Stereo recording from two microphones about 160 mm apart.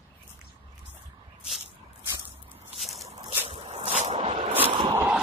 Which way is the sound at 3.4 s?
40° right (ahead or behind).